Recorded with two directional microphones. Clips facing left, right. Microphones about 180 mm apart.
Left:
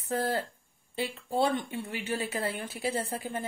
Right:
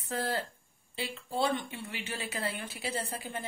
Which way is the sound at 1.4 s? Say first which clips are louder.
Left 3 dB; 45° left (ahead or behind).